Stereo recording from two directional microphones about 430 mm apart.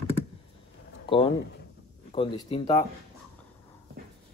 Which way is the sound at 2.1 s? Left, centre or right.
Centre.